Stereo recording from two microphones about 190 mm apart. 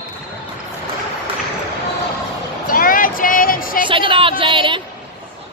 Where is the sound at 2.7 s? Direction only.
45° left (ahead or behind).